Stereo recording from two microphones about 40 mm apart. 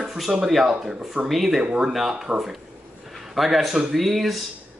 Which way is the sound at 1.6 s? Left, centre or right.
Right.